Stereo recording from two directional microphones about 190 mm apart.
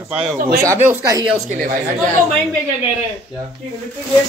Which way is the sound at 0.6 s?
10° right (ahead or behind).